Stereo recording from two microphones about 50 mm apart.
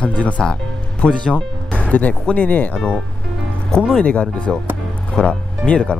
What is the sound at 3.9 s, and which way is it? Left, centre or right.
Speech, left.